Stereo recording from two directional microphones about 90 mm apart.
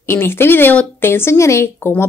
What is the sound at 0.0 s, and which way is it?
Speech, 25° left (ahead or behind).